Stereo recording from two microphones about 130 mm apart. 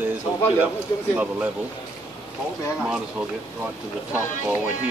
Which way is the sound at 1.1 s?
10° right (ahead or behind).